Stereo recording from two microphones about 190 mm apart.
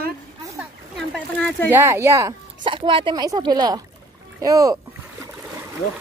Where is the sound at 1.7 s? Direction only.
15° right (ahead or behind).